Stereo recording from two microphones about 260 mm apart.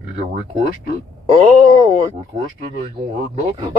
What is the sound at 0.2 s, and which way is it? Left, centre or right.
Speech, right.